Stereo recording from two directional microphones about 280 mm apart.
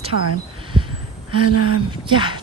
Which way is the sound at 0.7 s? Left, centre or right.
Centre.